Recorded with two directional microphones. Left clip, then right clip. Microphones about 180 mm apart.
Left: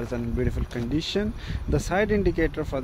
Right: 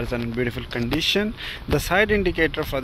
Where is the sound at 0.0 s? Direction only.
Centre (ahead or behind).